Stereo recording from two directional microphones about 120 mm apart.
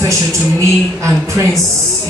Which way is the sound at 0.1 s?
25° right (ahead or behind).